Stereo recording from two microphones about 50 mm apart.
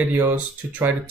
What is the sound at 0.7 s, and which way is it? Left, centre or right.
Speech, right.